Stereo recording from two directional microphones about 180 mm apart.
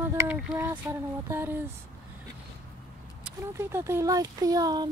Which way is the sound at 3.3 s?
15° right (ahead or behind).